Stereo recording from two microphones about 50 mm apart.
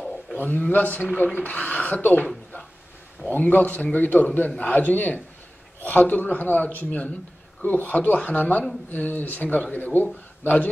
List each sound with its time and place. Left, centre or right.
0.4 s a man's voice: left
3.3 s a man's voice: left